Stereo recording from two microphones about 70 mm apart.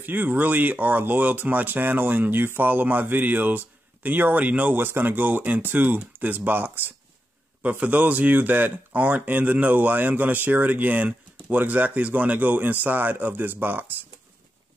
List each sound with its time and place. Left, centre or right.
0.0 s speech: right